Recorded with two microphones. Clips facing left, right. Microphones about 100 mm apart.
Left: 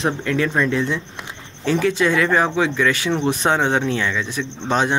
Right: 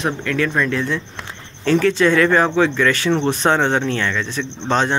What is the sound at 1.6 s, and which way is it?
Speech, 10° left (ahead or behind).